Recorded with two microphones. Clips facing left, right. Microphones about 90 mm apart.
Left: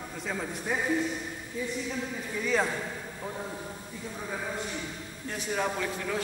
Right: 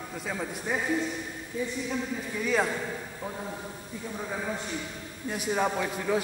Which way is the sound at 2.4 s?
5° right (ahead or behind).